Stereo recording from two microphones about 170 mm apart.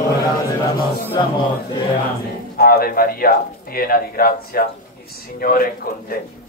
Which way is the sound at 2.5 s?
65° left (ahead or behind).